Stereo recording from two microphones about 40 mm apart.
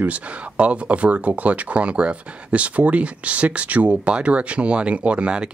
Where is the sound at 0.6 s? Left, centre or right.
Right.